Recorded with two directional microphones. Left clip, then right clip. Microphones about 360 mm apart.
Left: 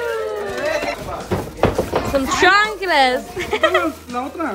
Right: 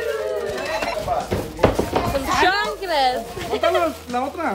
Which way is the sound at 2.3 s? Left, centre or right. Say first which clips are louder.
Left 6 dB; centre.